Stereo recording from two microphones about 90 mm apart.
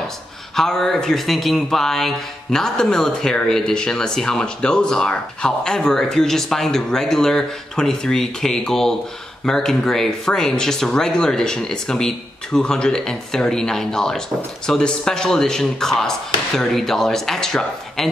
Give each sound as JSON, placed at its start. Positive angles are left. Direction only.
{"t": 0.6, "sound": "speech", "side_deg": 5}